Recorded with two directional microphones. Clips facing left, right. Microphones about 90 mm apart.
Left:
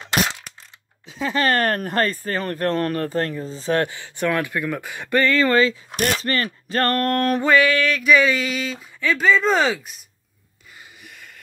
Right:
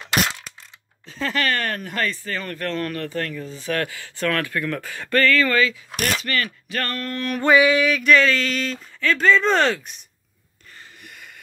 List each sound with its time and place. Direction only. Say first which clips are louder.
1.0 s speech: left 1 dB; 5° left (ahead or behind)
1.5 s speech: left 5 dB; 45° left (ahead or behind)
7.0 s mantra: left 8 dB; 55° left (ahead or behind)
7.5 s mantra: right 3 dB; 15° right (ahead or behind)
8.0 s speech: even; 10° left (ahead or behind)
11.0 s a sound: even; centre (ahead or behind)